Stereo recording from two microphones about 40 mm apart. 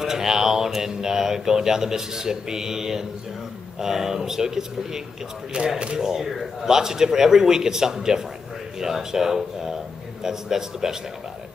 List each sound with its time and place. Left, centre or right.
0.0 s speech: centre
5.5 s speech: right
5.9 s speech: centre